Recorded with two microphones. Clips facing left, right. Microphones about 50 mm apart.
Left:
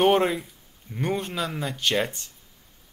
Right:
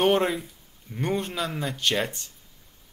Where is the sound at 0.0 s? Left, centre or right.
Centre.